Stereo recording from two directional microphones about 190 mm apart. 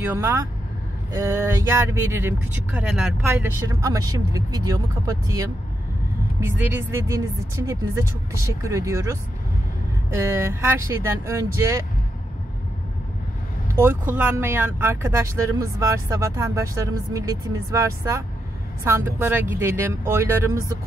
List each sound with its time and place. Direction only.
0.0 s speech: 15° right (ahead or behind)
6.7 s speech: 15° right (ahead or behind)
13.7 s speech: 10° right (ahead or behind)